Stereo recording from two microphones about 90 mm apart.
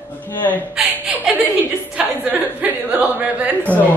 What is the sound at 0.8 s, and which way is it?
Chuckle, 5° right (ahead or behind).